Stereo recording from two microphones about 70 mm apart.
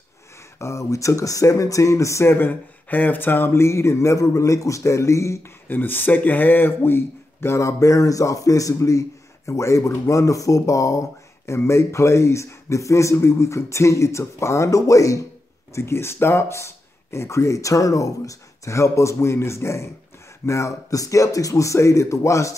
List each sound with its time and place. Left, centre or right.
0.6 s speech: left
2.3 s speech: left
5.7 s speech: left
15.7 s speech: left